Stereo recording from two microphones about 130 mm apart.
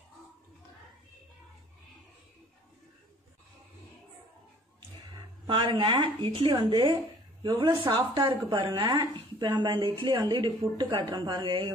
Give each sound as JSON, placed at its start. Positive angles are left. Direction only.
{"t": 5.5, "sound": "a woman's voice", "side_deg": -40}
{"t": 6.5, "sound": "speech", "side_deg": -30}
{"t": 7.4, "sound": "a woman's voice", "side_deg": -45}